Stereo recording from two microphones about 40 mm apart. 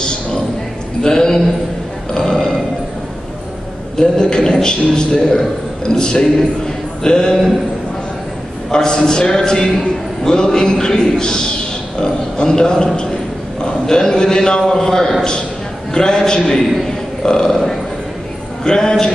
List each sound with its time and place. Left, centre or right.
1.0 s a man's voice: centre
3.9 s a man's voice: centre
8.7 s a man's voice: centre
18.6 s a man's voice: centre